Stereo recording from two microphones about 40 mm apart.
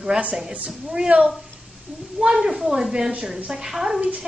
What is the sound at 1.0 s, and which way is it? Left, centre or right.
Speech, right.